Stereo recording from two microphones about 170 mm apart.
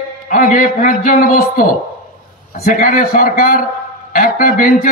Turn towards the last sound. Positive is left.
turn(degrees=50)  # may be behind; listen again after turning